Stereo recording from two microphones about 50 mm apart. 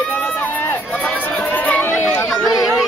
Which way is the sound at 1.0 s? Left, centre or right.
Left.